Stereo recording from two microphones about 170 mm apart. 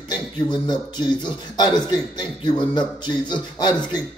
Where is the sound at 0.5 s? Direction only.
25° left (ahead or behind).